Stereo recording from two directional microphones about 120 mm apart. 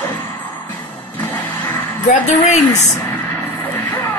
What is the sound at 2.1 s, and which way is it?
Speech, 80° left.